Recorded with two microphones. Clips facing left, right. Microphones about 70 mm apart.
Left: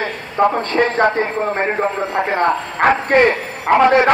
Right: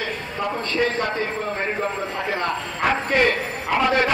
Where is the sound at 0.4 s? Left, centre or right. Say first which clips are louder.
Left 9 dB; left.